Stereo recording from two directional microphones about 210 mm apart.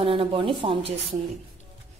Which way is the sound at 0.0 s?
25° right (ahead or behind).